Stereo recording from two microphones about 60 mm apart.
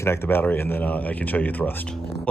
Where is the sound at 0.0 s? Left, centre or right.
Left.